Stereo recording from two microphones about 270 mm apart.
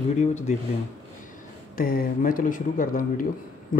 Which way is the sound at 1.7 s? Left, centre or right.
Left.